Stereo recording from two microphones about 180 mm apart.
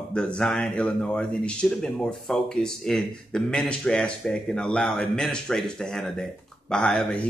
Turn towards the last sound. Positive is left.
turn(degrees=5)  # may be behind; listen again after turning